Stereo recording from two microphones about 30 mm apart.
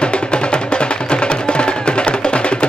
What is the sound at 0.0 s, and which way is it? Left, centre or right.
Music, left.